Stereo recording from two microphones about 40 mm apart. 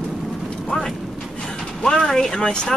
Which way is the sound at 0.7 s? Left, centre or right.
Left.